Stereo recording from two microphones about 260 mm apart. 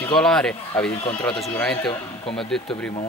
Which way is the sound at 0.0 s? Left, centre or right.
Centre.